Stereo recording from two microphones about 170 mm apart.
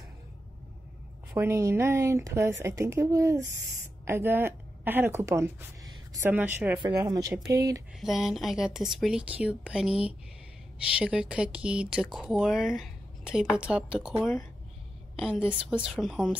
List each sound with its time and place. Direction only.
1.3 s a woman's voice: 15° right (ahead or behind)
6.8 s a woman's voice: 20° right (ahead or behind)
8.0 s speech: centre (ahead or behind)